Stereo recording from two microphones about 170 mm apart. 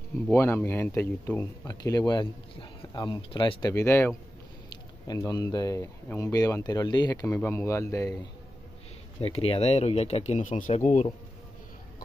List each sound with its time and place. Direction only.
0.3 s speech: 15° left (ahead or behind)
9.2 s speech: 35° left (ahead or behind)